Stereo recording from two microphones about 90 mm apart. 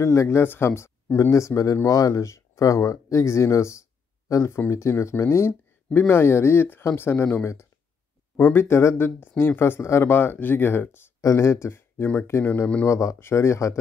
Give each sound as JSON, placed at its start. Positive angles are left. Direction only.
{"t": 0.0, "sound": "speech", "side_deg": 35}
{"t": 8.4, "sound": "speech", "side_deg": 25}
{"t": 11.1, "sound": "speech", "side_deg": 35}